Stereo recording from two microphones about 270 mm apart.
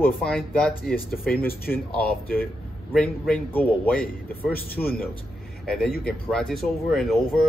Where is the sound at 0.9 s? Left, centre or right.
Left.